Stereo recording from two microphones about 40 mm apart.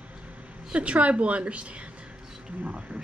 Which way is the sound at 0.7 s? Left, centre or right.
Right.